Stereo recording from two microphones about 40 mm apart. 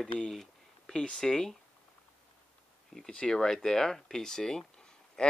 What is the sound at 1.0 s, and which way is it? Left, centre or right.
Speech, centre.